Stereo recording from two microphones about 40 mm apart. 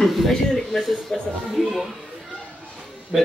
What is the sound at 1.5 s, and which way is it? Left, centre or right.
Speech, centre.